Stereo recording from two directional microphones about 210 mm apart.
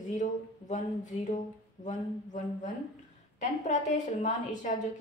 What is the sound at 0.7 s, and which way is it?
Speech, 35° left (ahead or behind).